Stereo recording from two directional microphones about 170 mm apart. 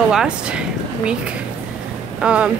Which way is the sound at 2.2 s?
5° right (ahead or behind).